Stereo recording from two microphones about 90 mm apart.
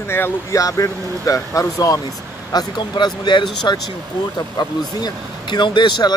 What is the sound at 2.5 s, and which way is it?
Speech, 50° left (ahead or behind).